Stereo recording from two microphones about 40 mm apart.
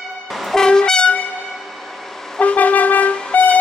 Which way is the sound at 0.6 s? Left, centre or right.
Centre.